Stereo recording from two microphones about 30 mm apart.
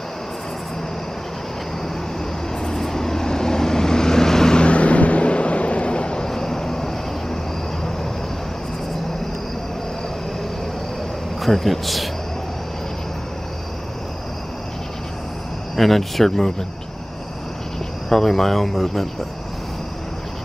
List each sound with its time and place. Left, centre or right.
2.6 s vehicle: centre
4.6 s vehicle: left
6.2 s vehicle: centre
11.4 s speech: centre
15.7 s speech: centre
18.1 s speech: centre